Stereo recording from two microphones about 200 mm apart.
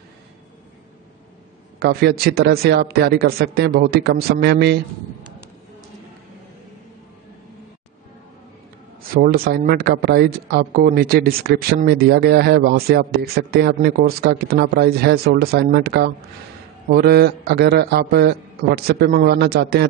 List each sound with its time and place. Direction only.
1.8 s speech: 55° right (ahead or behind)
9.1 s speech: 50° right (ahead or behind)